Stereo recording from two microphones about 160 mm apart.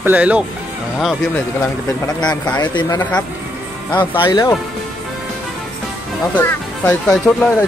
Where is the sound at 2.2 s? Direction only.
25° left (ahead or behind).